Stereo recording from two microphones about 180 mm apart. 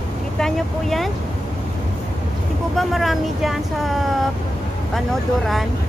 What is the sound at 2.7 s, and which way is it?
Speech, centre (ahead or behind).